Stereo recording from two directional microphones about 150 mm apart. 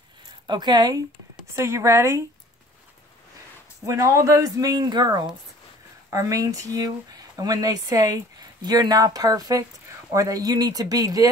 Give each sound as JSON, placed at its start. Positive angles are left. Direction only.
{"t": 0.5, "sound": "speech", "side_deg": -30}
{"t": 3.8, "sound": "speech", "side_deg": -20}